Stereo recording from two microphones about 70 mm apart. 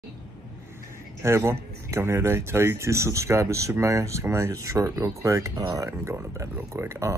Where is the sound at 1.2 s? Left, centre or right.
Right.